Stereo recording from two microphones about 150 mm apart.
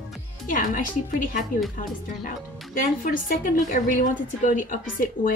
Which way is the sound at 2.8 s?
65° left (ahead or behind).